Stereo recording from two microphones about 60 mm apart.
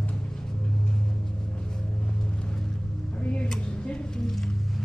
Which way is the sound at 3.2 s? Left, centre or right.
Left.